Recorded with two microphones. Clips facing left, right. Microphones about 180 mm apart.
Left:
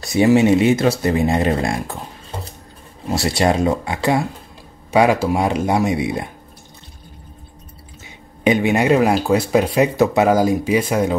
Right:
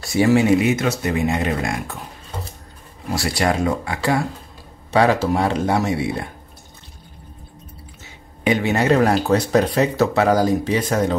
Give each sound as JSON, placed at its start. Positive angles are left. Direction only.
{"t": 0.0, "sound": "speech", "side_deg": 20}
{"t": 3.1, "sound": "speech", "side_deg": 25}
{"t": 4.9, "sound": "speech", "side_deg": 10}
{"t": 8.5, "sound": "speech", "side_deg": 15}